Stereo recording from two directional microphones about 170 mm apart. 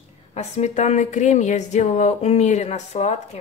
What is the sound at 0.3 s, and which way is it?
A woman's voice, 40° left (ahead or behind).